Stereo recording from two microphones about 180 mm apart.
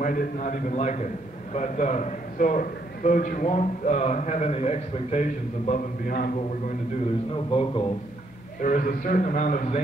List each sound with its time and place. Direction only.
0.0 s a man's voice: 50° left (ahead or behind)
7.3 s a man's voice: 30° left (ahead or behind)
8.5 s a man's voice: 45° left (ahead or behind)